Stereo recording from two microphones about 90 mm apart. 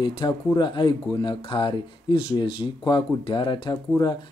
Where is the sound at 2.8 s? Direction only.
65° left (ahead or behind).